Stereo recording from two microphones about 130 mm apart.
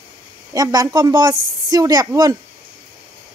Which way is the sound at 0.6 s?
30° right (ahead or behind).